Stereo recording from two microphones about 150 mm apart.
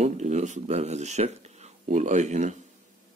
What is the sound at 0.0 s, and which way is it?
Speech, 50° right (ahead or behind).